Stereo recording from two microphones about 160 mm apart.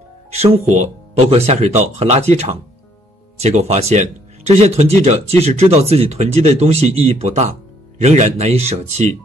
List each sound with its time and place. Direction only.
0.3 s speech: 40° right (ahead or behind)